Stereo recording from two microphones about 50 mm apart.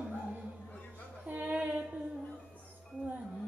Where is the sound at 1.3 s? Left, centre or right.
Right.